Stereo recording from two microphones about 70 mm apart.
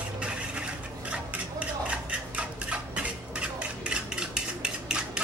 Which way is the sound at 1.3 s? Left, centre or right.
Centre.